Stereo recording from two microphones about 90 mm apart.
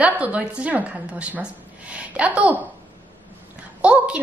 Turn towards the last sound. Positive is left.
turn(degrees=-15)  # may be behind; listen again after turning